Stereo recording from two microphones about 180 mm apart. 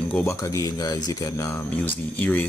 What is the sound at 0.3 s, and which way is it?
Speech, 15° left (ahead or behind).